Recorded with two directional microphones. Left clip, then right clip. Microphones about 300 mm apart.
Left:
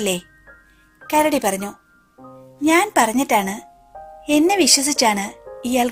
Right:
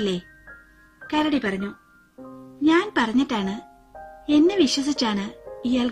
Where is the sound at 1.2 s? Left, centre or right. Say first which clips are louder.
Left 6 dB; left.